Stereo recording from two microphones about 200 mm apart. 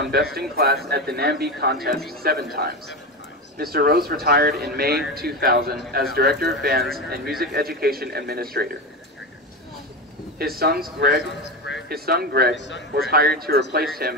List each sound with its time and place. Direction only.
0.0 s a man's voice: 50° right (ahead or behind)
10.4 s a man's voice: 50° right (ahead or behind)
11.4 s a sound: 65° left (ahead or behind)
11.9 s a man's voice: 50° right (ahead or behind)
12.5 s a man's voice: 65° left (ahead or behind)
13.1 s a man's voice: 50° right (ahead or behind)